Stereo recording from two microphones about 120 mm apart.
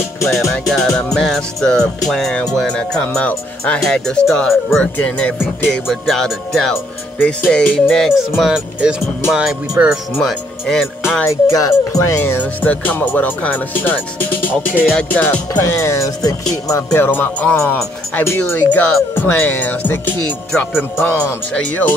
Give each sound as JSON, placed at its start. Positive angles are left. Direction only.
{"t": 0.2, "sound": "speech", "side_deg": 0}
{"t": 3.2, "sound": "music", "side_deg": 10}
{"t": 5.7, "sound": "speech", "side_deg": 0}
{"t": 7.2, "sound": "music", "side_deg": 10}
{"t": 8.4, "sound": "speech", "side_deg": -5}
{"t": 11.2, "sound": "music", "side_deg": 30}
{"t": 15.6, "sound": "speech", "side_deg": 25}
{"t": 16.9, "sound": "music", "side_deg": 15}
{"t": 18.1, "sound": "speech", "side_deg": 20}
{"t": 18.4, "sound": "music", "side_deg": 15}